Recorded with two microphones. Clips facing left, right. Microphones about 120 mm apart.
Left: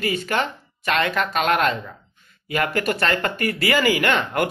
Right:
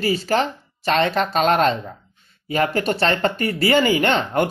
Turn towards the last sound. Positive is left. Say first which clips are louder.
# right 3 dB
turn(degrees=-30)  # may be behind; listen again after turning